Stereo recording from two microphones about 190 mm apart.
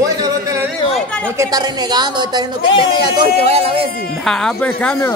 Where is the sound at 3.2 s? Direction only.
35° right (ahead or behind).